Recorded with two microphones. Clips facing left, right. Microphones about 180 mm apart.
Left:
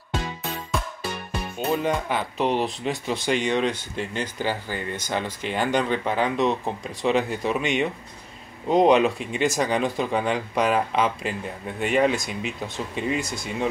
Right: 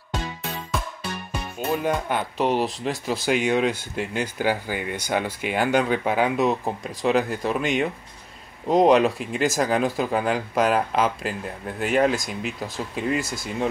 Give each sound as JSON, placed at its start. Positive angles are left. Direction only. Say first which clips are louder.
{"t": 1.7, "sound": "speech", "louder": "even", "side_deg": 0}